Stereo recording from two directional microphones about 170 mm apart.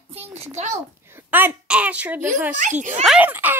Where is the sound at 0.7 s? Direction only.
15° right (ahead or behind).